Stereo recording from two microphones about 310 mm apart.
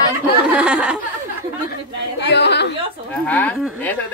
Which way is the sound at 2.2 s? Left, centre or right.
Left.